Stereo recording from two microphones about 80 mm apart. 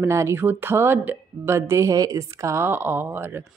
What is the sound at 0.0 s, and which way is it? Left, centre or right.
A woman's voice, right.